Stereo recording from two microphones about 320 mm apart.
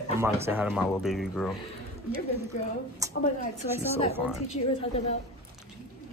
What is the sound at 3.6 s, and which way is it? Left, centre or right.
Speech, centre.